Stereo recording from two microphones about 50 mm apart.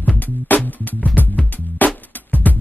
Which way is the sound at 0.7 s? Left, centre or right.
Left.